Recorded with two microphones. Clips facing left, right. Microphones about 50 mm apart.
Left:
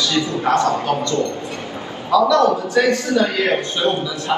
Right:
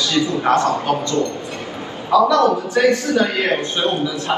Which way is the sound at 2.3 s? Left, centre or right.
Right.